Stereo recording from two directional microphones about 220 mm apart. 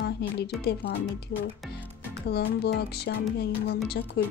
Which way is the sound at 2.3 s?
45° left (ahead or behind).